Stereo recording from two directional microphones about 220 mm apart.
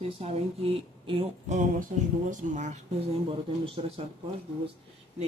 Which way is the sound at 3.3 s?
25° right (ahead or behind).